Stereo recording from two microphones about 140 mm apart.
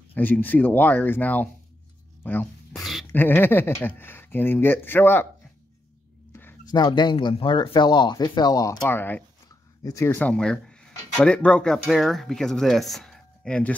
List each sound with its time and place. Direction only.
0.1 s speech: 10° left (ahead or behind)
2.7 s a sound: centre (ahead or behind)
3.1 s speech: 15° left (ahead or behind)
6.7 s speech: 30° left (ahead or behind); by 13.7 s 10° left (ahead or behind)